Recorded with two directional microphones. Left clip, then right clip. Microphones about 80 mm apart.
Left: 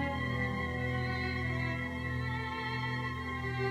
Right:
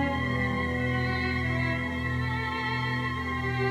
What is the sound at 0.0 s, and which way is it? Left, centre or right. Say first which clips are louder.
Music: right 6 dB; right.